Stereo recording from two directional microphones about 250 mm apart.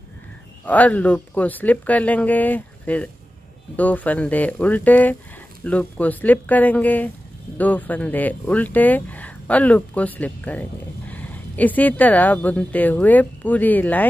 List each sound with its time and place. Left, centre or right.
0.7 s speech: centre